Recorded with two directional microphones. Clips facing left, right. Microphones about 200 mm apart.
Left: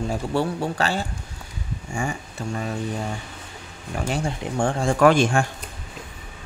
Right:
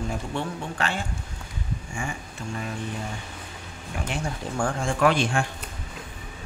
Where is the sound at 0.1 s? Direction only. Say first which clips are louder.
Left 6 dB; 35° left (ahead or behind).